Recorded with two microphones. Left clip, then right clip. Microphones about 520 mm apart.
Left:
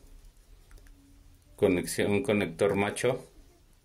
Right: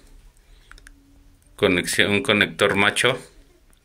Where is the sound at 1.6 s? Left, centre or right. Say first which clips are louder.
Right 8 dB; left.